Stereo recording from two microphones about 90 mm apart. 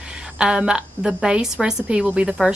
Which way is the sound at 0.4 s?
10° right (ahead or behind).